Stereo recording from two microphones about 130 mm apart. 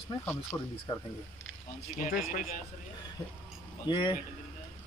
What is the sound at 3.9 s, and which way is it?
Speech, 35° left (ahead or behind).